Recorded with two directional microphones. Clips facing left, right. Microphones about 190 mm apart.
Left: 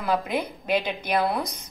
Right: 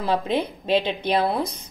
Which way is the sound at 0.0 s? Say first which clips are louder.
Right 3 dB; 30° right (ahead or behind).